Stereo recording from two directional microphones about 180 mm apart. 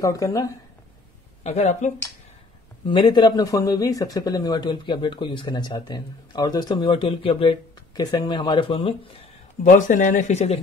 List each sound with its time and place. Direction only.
0.0 s speech: 20° left (ahead or behind)
1.4 s speech: 40° left (ahead or behind)
2.9 s speech: 25° left (ahead or behind)
9.7 s speech: 45° left (ahead or behind)